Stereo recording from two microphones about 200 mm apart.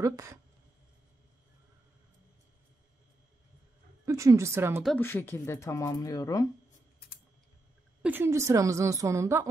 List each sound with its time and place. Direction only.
0.0 s a woman's voice: 15° right (ahead or behind)
4.0 s a woman's voice: 15° right (ahead or behind)
4.8 s speech: 10° left (ahead or behind)
8.0 s a woman's voice: 10° right (ahead or behind)